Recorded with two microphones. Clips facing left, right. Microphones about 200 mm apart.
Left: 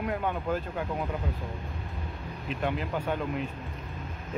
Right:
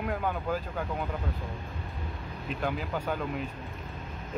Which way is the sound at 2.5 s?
Centre (ahead or behind).